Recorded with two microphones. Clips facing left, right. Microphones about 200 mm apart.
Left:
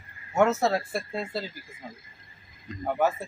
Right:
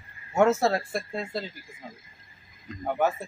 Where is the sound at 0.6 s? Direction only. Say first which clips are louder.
Even; centre (ahead or behind).